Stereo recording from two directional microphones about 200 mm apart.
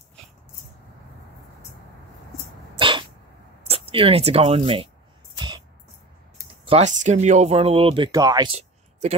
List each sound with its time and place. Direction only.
2.8 s sneeze: 25° right (ahead or behind)
3.6 s speech: 30° right (ahead or behind)
6.6 s speech: 30° right (ahead or behind)